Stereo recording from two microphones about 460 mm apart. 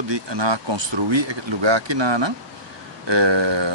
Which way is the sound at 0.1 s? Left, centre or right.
Right.